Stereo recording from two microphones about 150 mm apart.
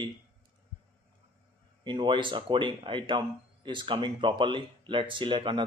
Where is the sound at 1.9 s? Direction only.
30° right (ahead or behind).